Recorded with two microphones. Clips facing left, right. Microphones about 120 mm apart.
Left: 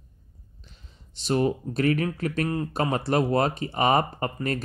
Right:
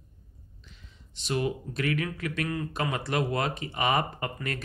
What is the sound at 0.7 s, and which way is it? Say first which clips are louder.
Speech: even; 35° left (ahead or behind).